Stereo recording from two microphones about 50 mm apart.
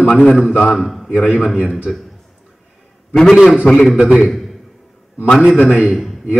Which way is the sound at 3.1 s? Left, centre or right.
Centre.